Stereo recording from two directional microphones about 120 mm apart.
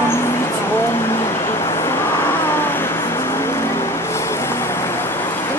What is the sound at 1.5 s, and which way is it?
Vehicle, 25° left (ahead or behind).